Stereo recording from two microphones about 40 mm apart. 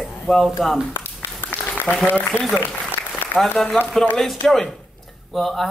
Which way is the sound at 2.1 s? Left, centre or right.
Left.